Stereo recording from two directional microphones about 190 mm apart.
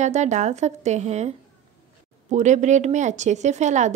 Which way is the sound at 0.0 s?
40° right (ahead or behind).